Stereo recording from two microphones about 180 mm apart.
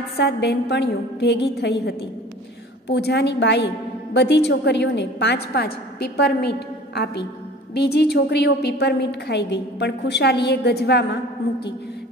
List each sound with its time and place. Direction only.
0.2 s a woman's voice: 70° left (ahead or behind)